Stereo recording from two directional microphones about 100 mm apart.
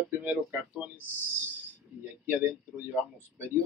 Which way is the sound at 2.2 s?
20° right (ahead or behind).